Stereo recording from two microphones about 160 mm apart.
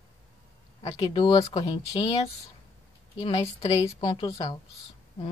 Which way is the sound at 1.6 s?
40° left (ahead or behind).